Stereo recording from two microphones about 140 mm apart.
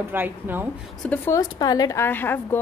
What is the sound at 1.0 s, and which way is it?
Speech, 15° left (ahead or behind).